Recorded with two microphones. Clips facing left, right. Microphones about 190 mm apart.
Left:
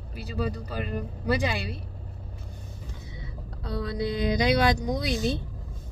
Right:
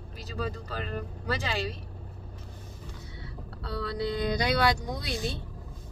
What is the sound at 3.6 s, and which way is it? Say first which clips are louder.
Speech: left 2 dB; 20° left (ahead or behind).